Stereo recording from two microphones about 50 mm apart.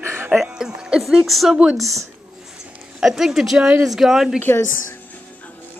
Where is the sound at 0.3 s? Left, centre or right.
Centre.